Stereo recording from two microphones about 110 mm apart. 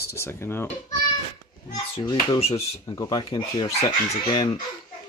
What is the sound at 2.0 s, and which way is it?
Speech, 40° left (ahead or behind).